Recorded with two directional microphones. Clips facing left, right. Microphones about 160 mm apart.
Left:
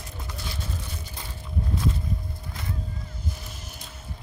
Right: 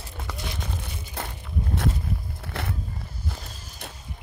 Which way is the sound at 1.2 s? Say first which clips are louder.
Right 12 dB; 65° right (ahead or behind).